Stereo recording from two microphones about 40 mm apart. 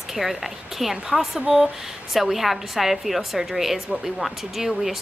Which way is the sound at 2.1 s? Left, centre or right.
Centre.